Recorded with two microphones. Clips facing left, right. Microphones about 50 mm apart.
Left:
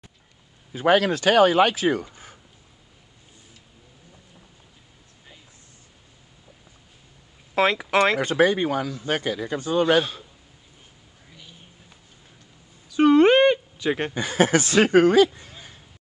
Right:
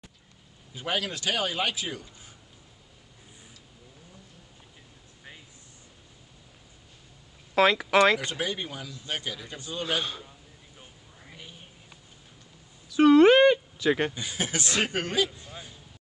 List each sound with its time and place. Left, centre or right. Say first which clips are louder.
0.7 s speech: left 12 dB; left
2.0 s a sound: left 6 dB; left
7.5 s speech: left 1 dB; centre
8.4 s speech: left 13 dB; left
11.2 s a sound: right 2 dB; right
12.9 s a sound: left 1 dB; left
13.8 s speech: even; centre
14.1 s speech: left 12 dB; left
15.0 s speech: left 11 dB; left